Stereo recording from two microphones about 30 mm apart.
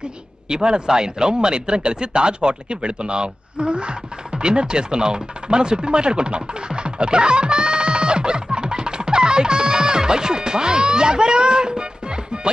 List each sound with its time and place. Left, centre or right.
0.5 s speech: right